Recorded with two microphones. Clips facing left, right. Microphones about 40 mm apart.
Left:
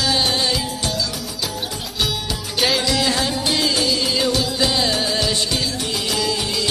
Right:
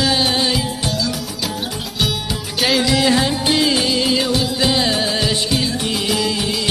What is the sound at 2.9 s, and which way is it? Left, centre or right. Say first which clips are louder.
Music: right 4 dB; centre.